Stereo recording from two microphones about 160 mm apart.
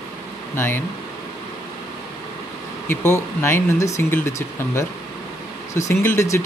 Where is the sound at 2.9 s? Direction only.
15° left (ahead or behind).